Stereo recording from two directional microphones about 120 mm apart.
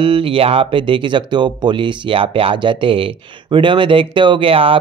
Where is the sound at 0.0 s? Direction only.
45° right (ahead or behind).